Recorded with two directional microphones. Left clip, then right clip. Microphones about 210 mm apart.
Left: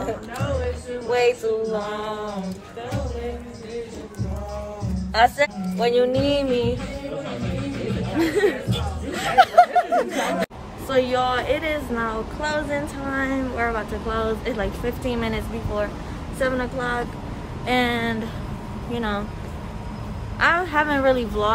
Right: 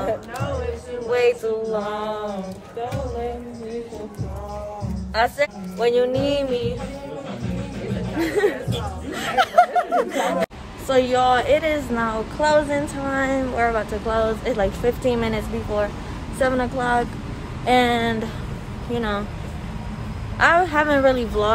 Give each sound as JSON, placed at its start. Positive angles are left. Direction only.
{"t": 1.1, "sound": "music", "side_deg": -10}
{"t": 5.1, "sound": "speech", "side_deg": -5}
{"t": 8.2, "sound": "a woman's voice", "side_deg": -5}
{"t": 9.1, "sound": "music", "side_deg": -5}
{"t": 9.8, "sound": "speech", "side_deg": -15}
{"t": 10.9, "sound": "a woman's voice", "side_deg": 5}
{"t": 20.3, "sound": "speech", "side_deg": 5}